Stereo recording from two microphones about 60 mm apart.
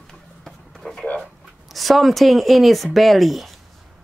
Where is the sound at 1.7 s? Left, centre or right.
Centre.